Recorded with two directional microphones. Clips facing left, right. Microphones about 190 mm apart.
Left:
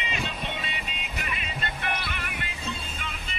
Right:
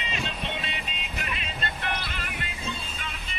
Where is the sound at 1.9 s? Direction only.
60° left (ahead or behind).